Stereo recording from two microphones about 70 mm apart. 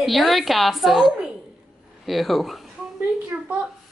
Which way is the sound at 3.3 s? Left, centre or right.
Right.